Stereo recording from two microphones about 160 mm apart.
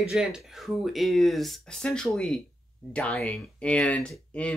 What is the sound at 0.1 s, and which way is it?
Speech, centre (ahead or behind).